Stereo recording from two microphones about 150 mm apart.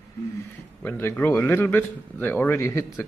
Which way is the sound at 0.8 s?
15° left (ahead or behind).